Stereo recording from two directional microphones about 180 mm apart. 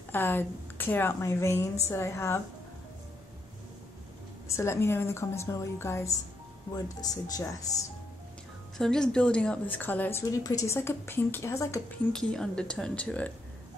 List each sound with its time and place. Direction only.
0.1 s speech: 10° left (ahead or behind)
4.5 s speech: 15° left (ahead or behind)
8.7 s speech: 5° left (ahead or behind)
12.1 s speech: 5° left (ahead or behind)